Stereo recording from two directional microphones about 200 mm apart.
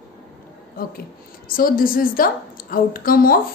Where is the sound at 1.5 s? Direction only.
45° left (ahead or behind).